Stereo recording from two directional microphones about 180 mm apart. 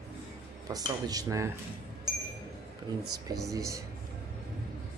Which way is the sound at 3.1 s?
20° right (ahead or behind).